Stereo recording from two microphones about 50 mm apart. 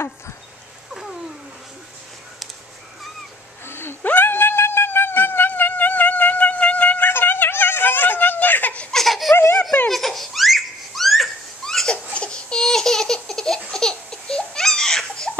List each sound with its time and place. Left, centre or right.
3.6 s a sound: left
4.0 s cat: left
7.1 s a sound: left
8.9 s laughter: centre
9.3 s baby laughter: left
9.8 s baby laughter: centre
11.6 s laughter: centre
12.1 s laughter: left